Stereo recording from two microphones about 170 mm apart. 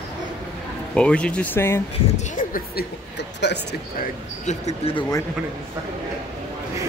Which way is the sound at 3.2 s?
90° left.